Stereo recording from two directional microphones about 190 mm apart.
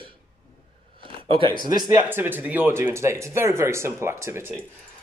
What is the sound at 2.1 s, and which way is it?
Speech, 10° right (ahead or behind).